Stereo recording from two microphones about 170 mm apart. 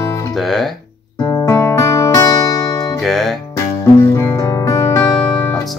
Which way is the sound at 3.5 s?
20° left (ahead or behind).